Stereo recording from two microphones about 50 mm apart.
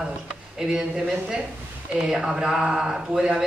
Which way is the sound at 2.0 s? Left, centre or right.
Centre.